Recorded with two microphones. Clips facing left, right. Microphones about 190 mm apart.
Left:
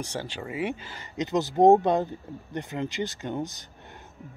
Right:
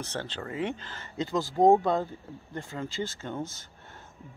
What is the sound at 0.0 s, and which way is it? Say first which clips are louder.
Speech: left 2 dB; 10° left (ahead or behind).